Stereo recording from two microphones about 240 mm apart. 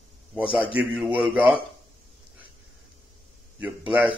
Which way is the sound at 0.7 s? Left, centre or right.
Centre.